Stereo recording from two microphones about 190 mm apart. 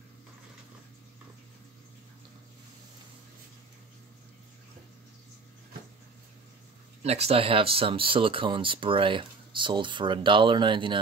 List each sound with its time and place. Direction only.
7.0 s speech: 35° right (ahead or behind)